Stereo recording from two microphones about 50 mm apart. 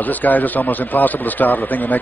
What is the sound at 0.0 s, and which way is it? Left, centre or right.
A man's voice, left.